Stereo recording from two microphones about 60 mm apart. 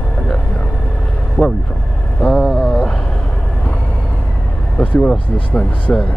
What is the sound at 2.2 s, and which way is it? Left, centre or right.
Vehicle, centre.